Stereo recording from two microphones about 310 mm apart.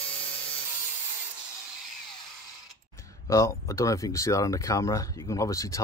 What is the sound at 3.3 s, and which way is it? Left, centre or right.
Speech, centre.